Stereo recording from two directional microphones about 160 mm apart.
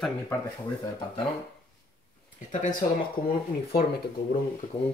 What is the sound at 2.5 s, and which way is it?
Speech, 50° left (ahead or behind).